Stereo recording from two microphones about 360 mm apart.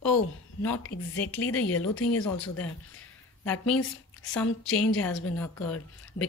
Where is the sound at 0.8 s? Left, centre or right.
Left.